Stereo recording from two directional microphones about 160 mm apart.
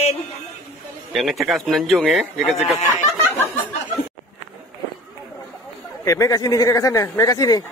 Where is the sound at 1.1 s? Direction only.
Centre (ahead or behind).